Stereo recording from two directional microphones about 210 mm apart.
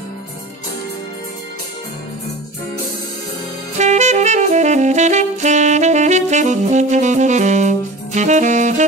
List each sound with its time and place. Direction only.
3.7 s saxophone: 35° right (ahead or behind)